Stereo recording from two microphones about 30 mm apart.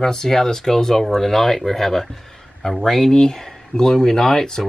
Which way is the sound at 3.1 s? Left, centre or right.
Left.